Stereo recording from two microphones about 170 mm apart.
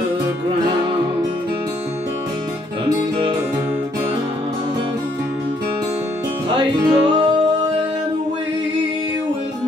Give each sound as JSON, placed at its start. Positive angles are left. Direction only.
{"t": 6.5, "sound": "music", "side_deg": -30}